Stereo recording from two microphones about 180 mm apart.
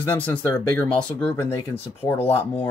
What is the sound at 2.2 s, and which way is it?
Speech, 30° left (ahead or behind).